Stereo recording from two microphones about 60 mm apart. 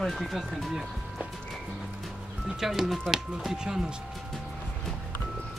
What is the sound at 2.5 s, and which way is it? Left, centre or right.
Speech, centre.